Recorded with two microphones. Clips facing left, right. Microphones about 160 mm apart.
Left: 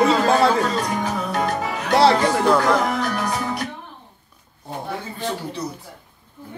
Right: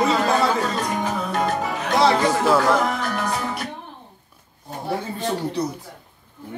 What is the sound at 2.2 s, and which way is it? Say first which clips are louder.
Speech: left 1 dB; 5° right (ahead or behind).